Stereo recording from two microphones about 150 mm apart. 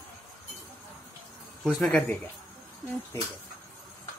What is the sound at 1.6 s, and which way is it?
Speech, centre (ahead or behind).